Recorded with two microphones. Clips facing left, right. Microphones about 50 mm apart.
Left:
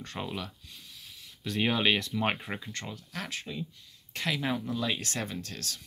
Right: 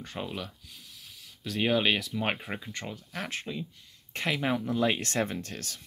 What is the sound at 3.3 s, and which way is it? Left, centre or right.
Speech, right.